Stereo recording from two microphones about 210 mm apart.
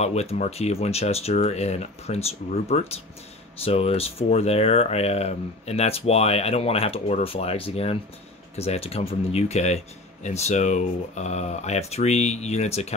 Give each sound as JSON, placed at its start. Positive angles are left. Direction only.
{"t": 0.0, "sound": "speech", "side_deg": 30}